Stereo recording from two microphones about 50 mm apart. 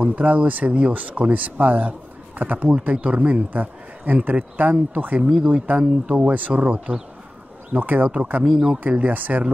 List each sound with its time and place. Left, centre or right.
0.0 s speech: right
8.5 s speech: centre
8.9 s speech: right